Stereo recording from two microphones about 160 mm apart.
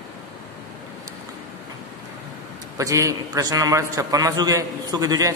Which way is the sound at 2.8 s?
20° right (ahead or behind).